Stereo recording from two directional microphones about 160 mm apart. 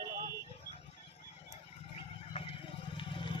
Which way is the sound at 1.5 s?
35° left (ahead or behind).